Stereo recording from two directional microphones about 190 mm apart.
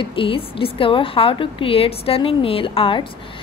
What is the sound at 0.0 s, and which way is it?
A woman's voice, 30° left (ahead or behind).